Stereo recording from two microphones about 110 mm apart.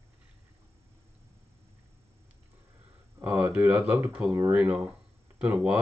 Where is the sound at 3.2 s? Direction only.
20° right (ahead or behind).